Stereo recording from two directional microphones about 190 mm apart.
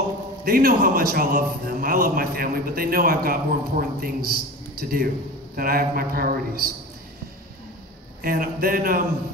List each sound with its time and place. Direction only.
0.5 s a man's voice: 50° right (ahead or behind)
8.2 s a man's voice: 50° right (ahead or behind)